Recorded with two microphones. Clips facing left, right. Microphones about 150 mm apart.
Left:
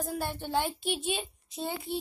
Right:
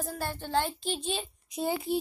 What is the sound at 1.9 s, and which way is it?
Speech, 25° left (ahead or behind).